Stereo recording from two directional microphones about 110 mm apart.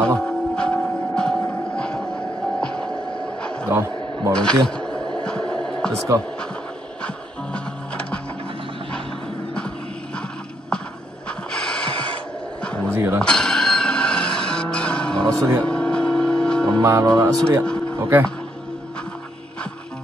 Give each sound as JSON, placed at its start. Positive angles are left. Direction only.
{"t": 0.2, "sound": "music", "side_deg": 10}
{"t": 3.6, "sound": "a sound", "side_deg": -30}
{"t": 4.3, "sound": "speech", "side_deg": 10}
{"t": 4.6, "sound": "a sound", "side_deg": 10}
{"t": 7.5, "sound": "music", "side_deg": 10}
{"t": 11.2, "sound": "snort", "side_deg": 10}
{"t": 12.6, "sound": "a sound", "side_deg": 10}
{"t": 12.9, "sound": "speech", "side_deg": -25}
{"t": 13.2, "sound": "music", "side_deg": 5}
{"t": 15.2, "sound": "speech", "side_deg": -30}
{"t": 15.6, "sound": "music", "side_deg": 10}
{"t": 16.8, "sound": "speech", "side_deg": -30}
{"t": 17.6, "sound": "a sound", "side_deg": 10}